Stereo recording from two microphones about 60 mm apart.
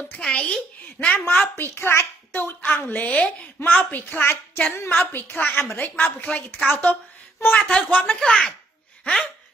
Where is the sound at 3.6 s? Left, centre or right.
Left.